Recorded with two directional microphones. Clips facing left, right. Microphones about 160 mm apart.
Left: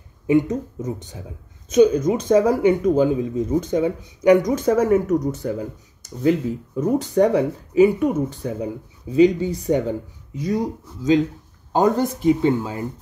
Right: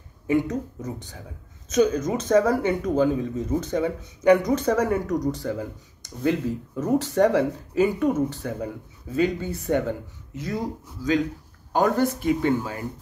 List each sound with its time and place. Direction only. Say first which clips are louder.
0.3 s speech: left 5 dB; 20° left (ahead or behind)
6.7 s speech: left 3 dB; 15° left (ahead or behind)